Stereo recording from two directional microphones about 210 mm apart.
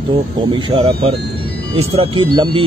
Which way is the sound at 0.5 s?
25° right (ahead or behind).